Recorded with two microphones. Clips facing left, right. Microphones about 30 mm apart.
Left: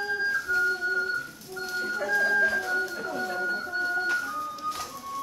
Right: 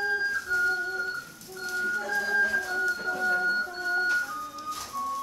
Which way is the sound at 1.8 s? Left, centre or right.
Left.